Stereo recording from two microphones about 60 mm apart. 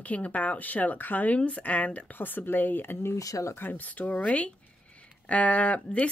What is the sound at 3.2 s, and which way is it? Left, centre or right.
Speech, left.